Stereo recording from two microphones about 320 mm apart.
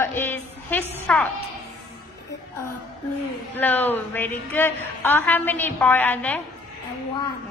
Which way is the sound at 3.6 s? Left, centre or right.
Centre.